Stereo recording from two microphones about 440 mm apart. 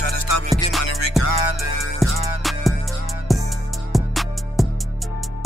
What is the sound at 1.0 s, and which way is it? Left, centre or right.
Music, left.